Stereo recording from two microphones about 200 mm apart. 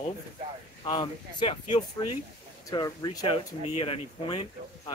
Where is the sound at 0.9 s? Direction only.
20° left (ahead or behind).